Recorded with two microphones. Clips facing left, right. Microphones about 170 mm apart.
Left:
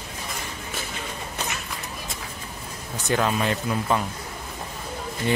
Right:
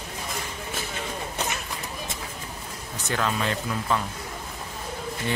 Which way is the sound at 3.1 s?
20° left (ahead or behind).